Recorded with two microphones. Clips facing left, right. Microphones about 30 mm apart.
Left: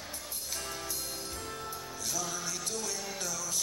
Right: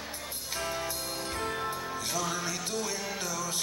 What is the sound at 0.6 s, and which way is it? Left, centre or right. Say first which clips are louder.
Music: right 8 dB; right.